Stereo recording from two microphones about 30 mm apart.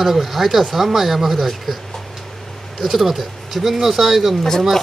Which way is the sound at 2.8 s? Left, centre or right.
Centre.